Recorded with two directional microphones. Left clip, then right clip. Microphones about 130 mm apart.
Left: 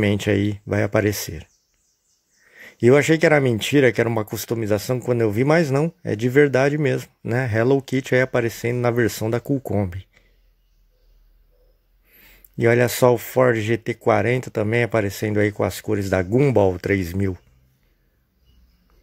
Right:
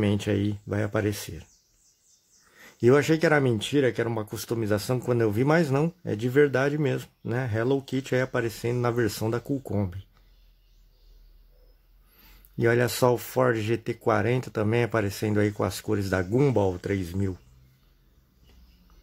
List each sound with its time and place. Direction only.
0.0 s speech: 40° left (ahead or behind)
2.5 s speech: 25° left (ahead or behind)
4.5 s speech: 25° left (ahead or behind)
12.2 s speech: 30° left (ahead or behind)
16.5 s speech: 40° left (ahead or behind)